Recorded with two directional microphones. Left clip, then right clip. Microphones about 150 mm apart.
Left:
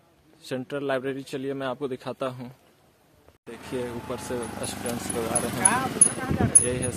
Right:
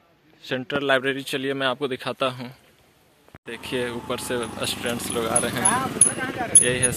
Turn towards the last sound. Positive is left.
turn(degrees=-5)  # may be behind; listen again after turning